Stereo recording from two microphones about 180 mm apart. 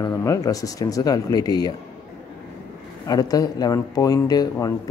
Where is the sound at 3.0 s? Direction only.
20° left (ahead or behind).